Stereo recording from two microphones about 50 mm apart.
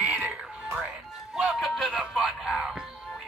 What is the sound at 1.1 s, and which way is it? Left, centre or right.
Music, centre.